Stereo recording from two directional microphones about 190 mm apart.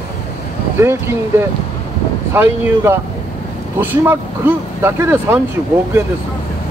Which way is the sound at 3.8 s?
10° right (ahead or behind).